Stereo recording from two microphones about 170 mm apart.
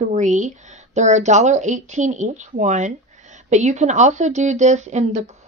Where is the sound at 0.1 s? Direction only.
45° right (ahead or behind).